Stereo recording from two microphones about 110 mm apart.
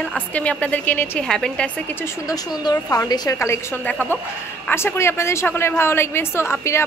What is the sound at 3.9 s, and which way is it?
A woman's voice, 15° left (ahead or behind).